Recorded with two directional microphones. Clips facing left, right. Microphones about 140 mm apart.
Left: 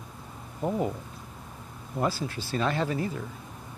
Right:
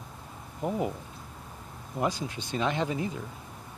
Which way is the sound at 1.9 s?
15° right (ahead or behind).